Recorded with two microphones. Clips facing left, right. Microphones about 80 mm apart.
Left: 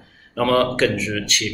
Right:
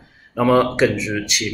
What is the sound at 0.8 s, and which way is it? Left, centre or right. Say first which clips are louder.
Speech: right 2 dB; centre.